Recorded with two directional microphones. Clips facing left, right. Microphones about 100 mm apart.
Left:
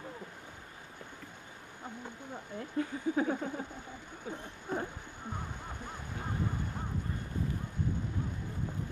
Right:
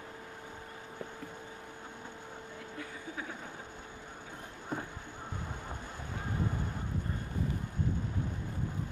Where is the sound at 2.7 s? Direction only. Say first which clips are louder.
Left 13 dB; 35° left (ahead or behind).